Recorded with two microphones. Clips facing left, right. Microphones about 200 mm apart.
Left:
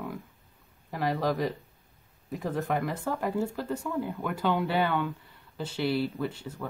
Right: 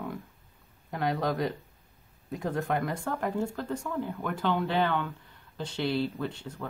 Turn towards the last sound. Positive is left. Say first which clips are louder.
# left 2 dB
turn(degrees=5)  # may be behind; listen again after turning